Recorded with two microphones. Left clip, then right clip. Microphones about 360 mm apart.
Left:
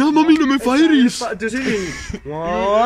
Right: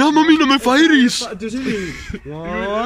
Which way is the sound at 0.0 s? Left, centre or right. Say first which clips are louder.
Right 1 dB; centre.